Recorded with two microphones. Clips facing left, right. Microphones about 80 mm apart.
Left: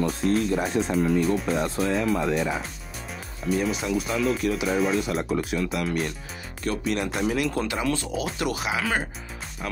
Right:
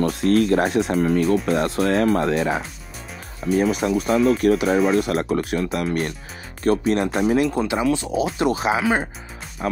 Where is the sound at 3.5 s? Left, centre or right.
Right.